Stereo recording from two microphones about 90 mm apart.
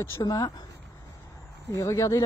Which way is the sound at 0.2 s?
50° left (ahead or behind).